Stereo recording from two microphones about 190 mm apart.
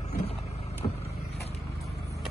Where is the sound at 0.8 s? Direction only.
25° left (ahead or behind).